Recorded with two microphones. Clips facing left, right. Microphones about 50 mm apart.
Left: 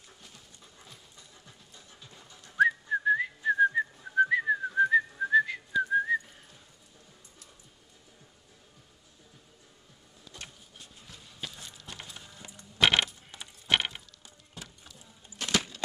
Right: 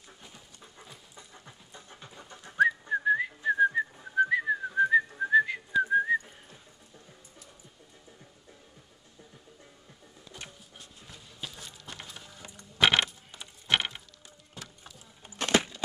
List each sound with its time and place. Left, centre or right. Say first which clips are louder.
0.2 s pant: right 3 dB; centre
2.2 s whistling: right 5 dB; right
2.6 s whistling: even; centre
10.3 s printer: right 1 dB; centre
11.9 s music: even; centre
12.4 s coin: right 1 dB; right
12.8 s coin: right 1 dB; centre
13.7 s a sound: even; centre
15.2 s a sound: right 4 dB; right